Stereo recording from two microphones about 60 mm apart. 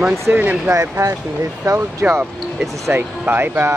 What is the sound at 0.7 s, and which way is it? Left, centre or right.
Speech, right.